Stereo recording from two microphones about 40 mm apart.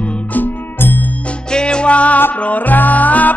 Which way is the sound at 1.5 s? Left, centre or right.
Left.